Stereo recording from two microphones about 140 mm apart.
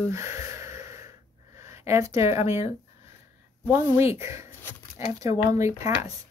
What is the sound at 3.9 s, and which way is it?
Speech, 20° right (ahead or behind).